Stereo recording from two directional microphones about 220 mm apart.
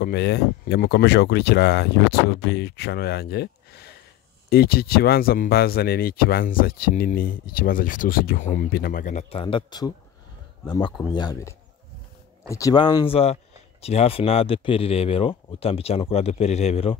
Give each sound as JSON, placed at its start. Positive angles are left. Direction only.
{"t": 0.0, "sound": "speech", "side_deg": 50}